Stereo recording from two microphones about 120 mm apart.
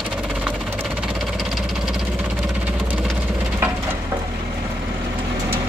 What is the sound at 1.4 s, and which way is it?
Engine, centre (ahead or behind).